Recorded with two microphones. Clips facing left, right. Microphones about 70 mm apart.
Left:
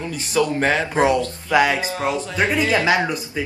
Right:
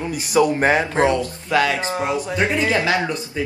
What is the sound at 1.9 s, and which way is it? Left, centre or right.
Speech, right.